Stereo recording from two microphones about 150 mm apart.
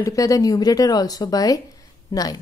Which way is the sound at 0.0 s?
25° left (ahead or behind).